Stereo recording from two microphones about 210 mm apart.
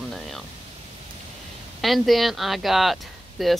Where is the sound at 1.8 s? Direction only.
Centre (ahead or behind).